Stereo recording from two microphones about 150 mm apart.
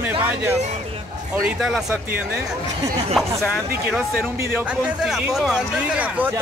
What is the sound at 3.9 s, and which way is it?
Speech, 5° right (ahead or behind).